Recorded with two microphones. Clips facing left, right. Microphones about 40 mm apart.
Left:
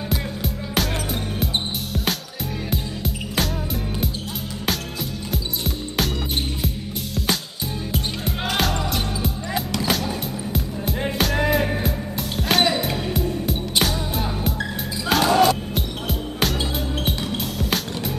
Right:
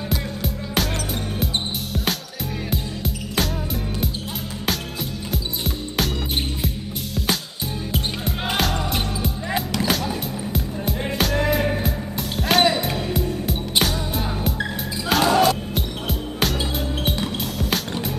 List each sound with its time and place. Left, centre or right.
0.1 s music: centre
2.7 s music: centre
9.7 s music: centre